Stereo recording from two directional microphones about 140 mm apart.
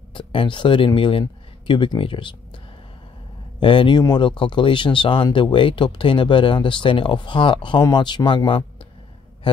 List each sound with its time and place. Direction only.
0.1 s a man's voice: 35° left (ahead or behind)